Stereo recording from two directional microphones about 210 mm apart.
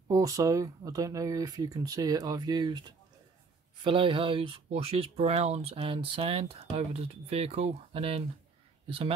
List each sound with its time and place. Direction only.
0.1 s speech: 15° right (ahead or behind)